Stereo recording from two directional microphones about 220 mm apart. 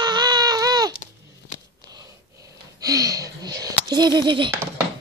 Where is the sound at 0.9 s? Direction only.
35° left (ahead or behind).